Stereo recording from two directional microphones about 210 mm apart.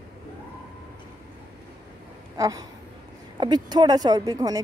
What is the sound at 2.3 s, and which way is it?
Speech, 15° right (ahead or behind).